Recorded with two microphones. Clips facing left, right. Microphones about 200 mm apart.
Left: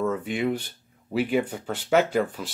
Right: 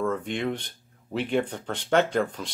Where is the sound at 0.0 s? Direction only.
5° left (ahead or behind).